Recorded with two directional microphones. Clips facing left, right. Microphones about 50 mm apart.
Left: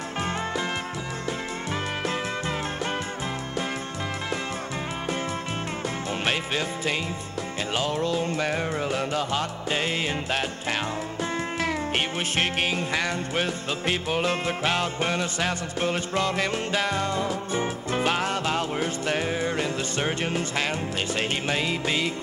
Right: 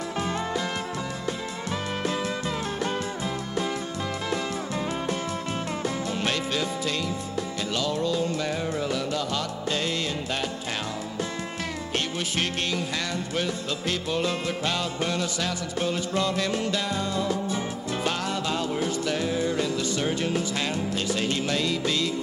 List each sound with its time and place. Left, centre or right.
6.2 s music: left
7.7 s music: left
12.4 s music: left
21.5 s music: left